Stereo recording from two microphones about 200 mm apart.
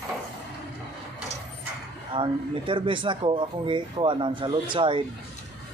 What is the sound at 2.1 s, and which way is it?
Speech, 25° right (ahead or behind).